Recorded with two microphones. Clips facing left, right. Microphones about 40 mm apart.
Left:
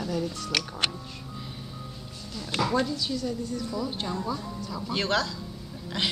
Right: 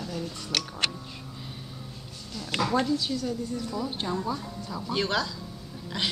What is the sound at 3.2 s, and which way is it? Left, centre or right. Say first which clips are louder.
Speech: even; right.